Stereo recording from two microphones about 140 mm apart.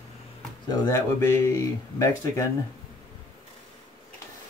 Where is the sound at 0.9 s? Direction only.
20° left (ahead or behind).